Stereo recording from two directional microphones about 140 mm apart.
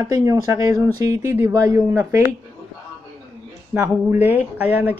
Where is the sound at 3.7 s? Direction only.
15° right (ahead or behind).